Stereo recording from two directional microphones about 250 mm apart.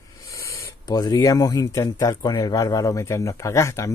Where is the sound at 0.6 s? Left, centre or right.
Centre.